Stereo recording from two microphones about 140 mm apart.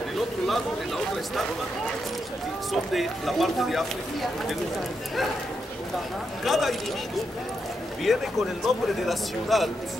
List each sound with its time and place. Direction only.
2.7 s speech: centre (ahead or behind)
6.4 s speech: centre (ahead or behind)